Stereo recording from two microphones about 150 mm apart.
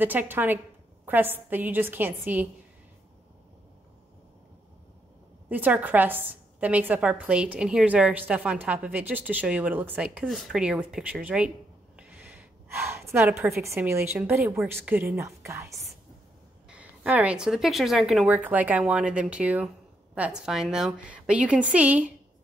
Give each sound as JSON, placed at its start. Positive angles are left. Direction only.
{"t": 0.0, "sound": "a woman's voice", "side_deg": -10}
{"t": 5.5, "sound": "a woman's voice", "side_deg": -10}
{"t": 12.6, "sound": "a woman's voice", "side_deg": -15}
{"t": 16.6, "sound": "a woman's voice", "side_deg": -5}